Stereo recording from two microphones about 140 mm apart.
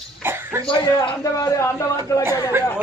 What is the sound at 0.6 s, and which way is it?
Speech, 40° left (ahead or behind).